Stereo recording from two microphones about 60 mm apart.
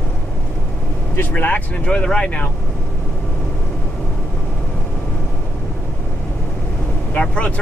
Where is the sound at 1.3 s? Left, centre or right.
Left.